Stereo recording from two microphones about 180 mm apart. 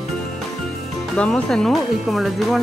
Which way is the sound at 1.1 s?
5° left (ahead or behind).